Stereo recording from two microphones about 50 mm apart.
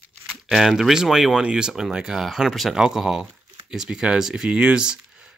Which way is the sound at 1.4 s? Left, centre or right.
Centre.